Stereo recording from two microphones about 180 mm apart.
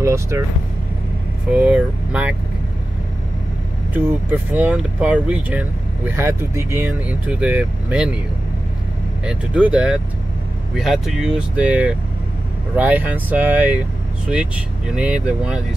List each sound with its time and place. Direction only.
0.0 s speech: 15° right (ahead or behind)
1.5 s speech: 5° right (ahead or behind)
3.9 s speech: 10° right (ahead or behind)
9.2 s speech: 5° right (ahead or behind)